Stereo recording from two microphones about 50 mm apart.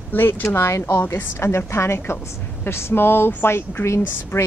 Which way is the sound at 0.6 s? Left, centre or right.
Left.